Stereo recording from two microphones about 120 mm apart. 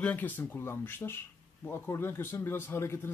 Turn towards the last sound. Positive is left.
turn(degrees=20)  # may be behind; listen again after turning